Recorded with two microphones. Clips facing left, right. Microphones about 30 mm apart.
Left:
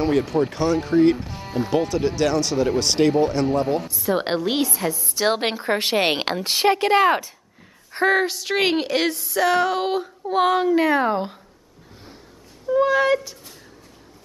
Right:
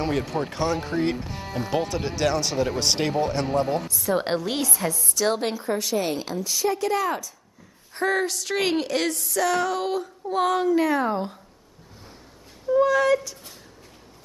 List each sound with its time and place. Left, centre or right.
0.0 s speech: centre
3.8 s a woman's voice: centre
5.1 s a woman's voice: left
7.9 s speech: left
12.6 s speech: left